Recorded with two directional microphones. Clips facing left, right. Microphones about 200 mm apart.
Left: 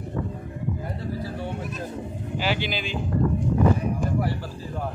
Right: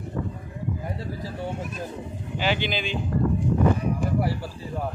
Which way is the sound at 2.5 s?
5° left (ahead or behind).